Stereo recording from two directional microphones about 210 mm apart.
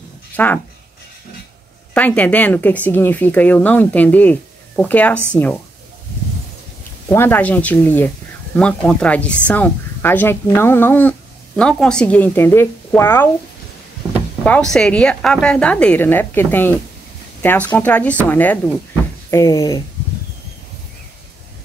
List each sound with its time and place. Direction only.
0.3 s speech: 5° left (ahead or behind)
2.0 s speech: 5° left (ahead or behind)
7.1 s speech: 10° left (ahead or behind)
14.4 s a woman's voice: 5° left (ahead or behind)